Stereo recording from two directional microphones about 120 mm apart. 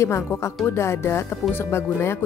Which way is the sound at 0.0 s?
20° left (ahead or behind).